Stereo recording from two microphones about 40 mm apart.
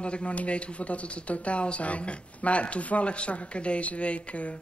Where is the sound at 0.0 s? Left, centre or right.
Left.